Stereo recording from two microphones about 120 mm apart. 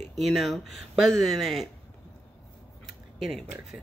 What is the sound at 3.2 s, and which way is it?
Speech, centre (ahead or behind).